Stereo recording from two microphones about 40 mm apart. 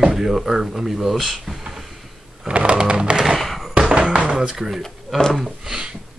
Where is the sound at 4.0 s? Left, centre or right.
Right.